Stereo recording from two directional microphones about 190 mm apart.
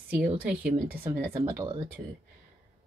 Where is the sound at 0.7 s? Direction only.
50° right (ahead or behind).